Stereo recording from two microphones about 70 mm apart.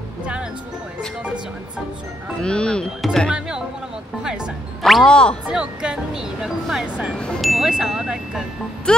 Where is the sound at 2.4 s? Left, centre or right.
Centre.